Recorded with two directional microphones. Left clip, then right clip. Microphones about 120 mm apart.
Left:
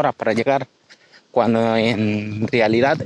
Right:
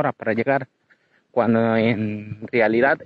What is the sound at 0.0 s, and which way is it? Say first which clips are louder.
A man's voice: left 3 dB; 50° left (ahead or behind).